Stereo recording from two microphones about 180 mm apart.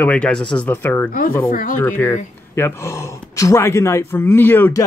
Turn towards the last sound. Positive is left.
turn(degrees=10)  # may be behind; listen again after turning